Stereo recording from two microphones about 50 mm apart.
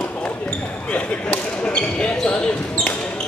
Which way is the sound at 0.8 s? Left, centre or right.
Left.